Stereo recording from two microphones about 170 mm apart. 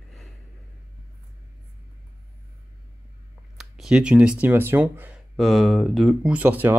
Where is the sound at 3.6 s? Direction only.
5° right (ahead or behind).